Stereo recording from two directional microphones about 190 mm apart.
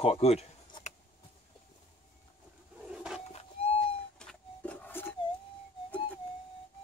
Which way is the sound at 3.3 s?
35° left (ahead or behind).